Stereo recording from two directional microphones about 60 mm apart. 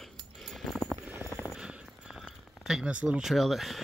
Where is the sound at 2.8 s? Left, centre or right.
Centre.